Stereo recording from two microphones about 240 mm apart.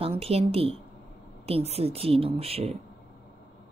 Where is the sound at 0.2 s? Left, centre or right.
Right.